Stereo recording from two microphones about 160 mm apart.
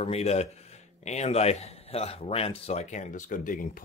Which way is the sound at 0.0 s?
40° left (ahead or behind).